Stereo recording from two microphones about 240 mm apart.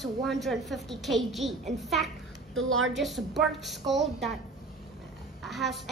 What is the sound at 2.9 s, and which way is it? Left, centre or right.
A woman's voice, centre.